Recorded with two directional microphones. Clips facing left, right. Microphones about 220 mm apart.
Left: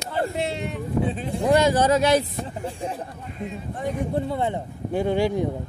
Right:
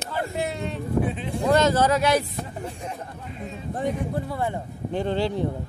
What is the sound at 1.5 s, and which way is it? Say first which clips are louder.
Speech: left 1 dB; 15° left (ahead or behind).